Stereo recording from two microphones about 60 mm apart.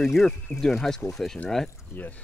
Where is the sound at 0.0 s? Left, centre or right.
Centre.